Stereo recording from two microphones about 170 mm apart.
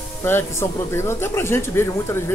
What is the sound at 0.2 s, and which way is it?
Speech, 15° left (ahead or behind).